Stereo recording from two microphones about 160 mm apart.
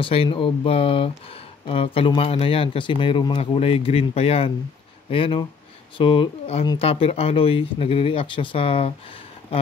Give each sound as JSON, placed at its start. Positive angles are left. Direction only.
{"t": 0.0, "sound": "speech", "side_deg": 35}